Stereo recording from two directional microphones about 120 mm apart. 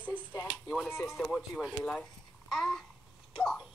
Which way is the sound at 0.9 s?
15° left (ahead or behind).